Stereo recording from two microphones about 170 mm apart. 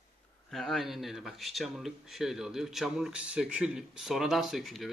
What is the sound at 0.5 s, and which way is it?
Speech, centre (ahead or behind).